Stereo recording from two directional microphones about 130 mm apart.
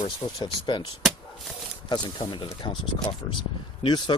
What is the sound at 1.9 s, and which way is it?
Speech, 35° left (ahead or behind).